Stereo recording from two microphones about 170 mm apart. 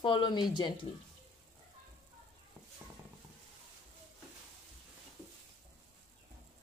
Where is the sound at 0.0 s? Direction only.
25° left (ahead or behind).